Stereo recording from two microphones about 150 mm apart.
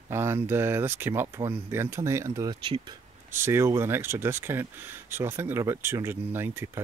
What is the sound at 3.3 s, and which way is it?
Speech, 15° right (ahead or behind).